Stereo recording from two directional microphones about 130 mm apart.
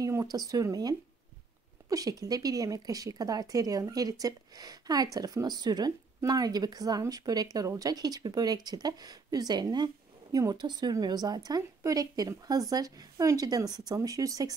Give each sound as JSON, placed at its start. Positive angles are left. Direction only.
{"t": 0.0, "sound": "speech", "side_deg": -25}